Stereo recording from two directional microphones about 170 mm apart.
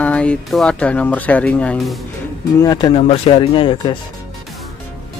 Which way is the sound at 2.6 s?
25° left (ahead or behind).